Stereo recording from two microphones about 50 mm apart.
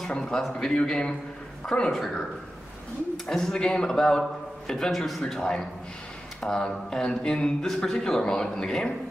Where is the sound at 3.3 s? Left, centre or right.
Centre.